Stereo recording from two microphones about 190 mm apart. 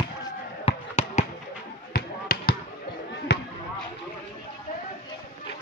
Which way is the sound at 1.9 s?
55° left (ahead or behind).